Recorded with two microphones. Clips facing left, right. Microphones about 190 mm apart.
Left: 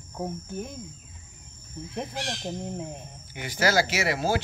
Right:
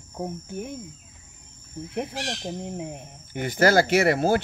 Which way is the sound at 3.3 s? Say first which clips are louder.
Right 5 dB; 50° right (ahead or behind).